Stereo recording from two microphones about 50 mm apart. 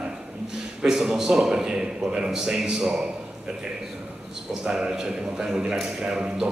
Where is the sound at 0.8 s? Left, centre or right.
Centre.